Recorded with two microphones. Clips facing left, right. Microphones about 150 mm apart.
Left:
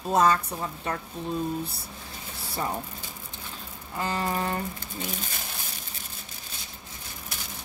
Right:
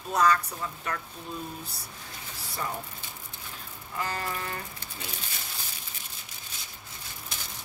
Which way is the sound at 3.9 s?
30° left (ahead or behind).